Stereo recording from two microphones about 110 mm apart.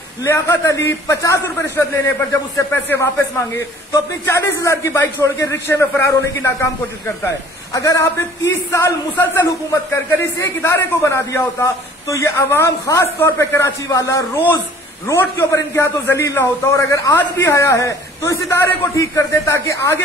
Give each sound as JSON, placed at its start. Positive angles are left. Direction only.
{"t": 0.2, "sound": "a man's voice", "side_deg": 25}